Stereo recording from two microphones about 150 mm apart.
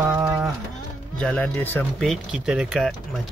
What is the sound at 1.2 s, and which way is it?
Speech, 10° left (ahead or behind).